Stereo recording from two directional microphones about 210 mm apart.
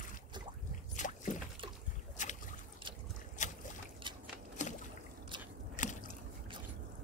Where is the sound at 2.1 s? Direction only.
35° left (ahead or behind).